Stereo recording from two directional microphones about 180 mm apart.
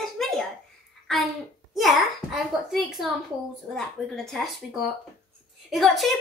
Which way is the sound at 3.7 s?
Centre (ahead or behind).